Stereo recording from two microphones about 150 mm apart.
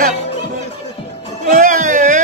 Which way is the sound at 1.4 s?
55° right (ahead or behind).